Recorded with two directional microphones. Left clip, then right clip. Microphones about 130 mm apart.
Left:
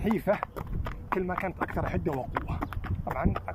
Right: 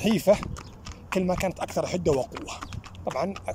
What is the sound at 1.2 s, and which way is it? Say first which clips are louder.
Speech: right 8 dB; 30° right (ahead or behind).